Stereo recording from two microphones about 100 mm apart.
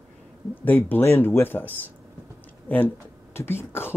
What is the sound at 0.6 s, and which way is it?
Speech, 20° left (ahead or behind).